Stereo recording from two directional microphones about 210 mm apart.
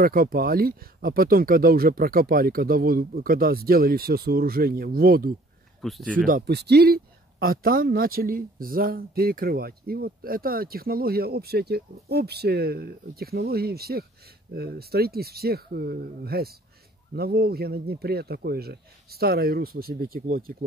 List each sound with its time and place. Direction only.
0.0 s speech: 45° right (ahead or behind)
5.8 s speech: centre (ahead or behind)
6.1 s speech: 40° right (ahead or behind)